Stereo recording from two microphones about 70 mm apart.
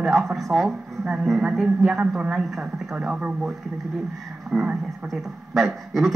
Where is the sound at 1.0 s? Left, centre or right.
Centre.